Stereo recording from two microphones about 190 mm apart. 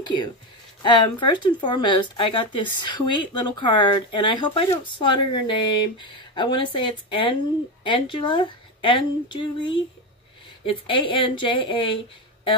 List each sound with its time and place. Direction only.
0.0 s speech: 25° left (ahead or behind)